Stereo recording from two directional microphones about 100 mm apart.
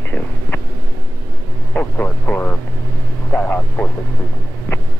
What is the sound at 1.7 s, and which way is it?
Speech, 15° left (ahead or behind).